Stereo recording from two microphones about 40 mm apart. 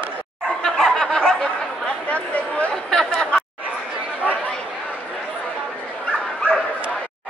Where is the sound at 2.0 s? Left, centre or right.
Left.